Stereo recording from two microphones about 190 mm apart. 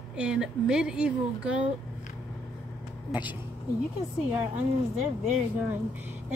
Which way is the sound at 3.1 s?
10° right (ahead or behind).